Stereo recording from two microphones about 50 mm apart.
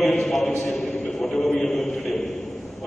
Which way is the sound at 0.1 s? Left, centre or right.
Centre.